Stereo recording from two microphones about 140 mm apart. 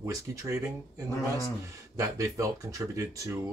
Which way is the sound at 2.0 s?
25° right (ahead or behind).